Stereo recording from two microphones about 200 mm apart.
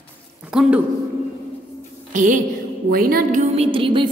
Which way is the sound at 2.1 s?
40° right (ahead or behind).